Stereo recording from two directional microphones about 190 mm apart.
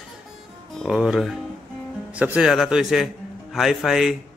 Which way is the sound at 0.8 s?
5° right (ahead or behind).